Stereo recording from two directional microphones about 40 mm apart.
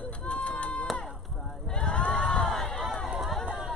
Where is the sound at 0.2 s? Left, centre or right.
Left.